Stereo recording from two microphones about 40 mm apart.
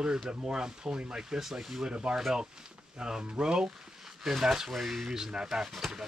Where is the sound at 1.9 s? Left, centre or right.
Right.